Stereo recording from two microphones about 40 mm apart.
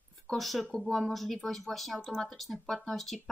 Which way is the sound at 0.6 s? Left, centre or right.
Left.